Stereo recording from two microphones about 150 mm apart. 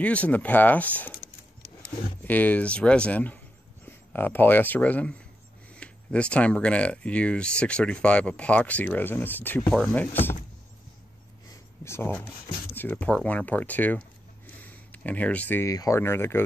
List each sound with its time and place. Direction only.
0.0 s speech: 10° left (ahead or behind)
2.2 s speech: 10° left (ahead or behind)
9.7 s speech: centre (ahead or behind)
11.4 s a sound: 15° left (ahead or behind)
12.7 s speech: 10° left (ahead or behind)